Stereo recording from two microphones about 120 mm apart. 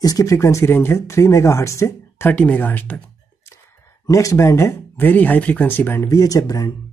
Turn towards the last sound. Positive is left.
turn(degrees=30)  # may be behind; listen again after turning